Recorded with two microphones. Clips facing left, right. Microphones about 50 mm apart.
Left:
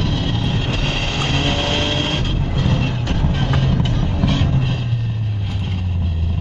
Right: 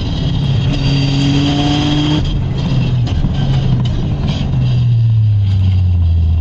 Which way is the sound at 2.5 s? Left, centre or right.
Left.